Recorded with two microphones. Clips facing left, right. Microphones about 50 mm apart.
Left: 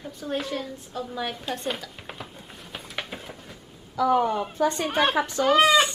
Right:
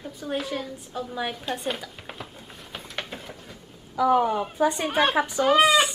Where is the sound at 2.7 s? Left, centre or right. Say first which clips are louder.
Even; centre.